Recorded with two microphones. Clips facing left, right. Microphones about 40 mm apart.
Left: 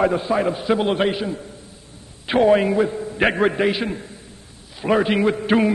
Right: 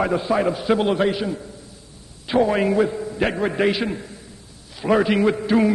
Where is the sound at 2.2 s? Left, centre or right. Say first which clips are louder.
Left 2 dB; left.